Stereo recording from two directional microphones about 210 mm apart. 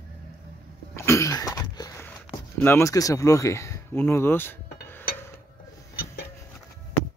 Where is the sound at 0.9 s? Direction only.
15° left (ahead or behind).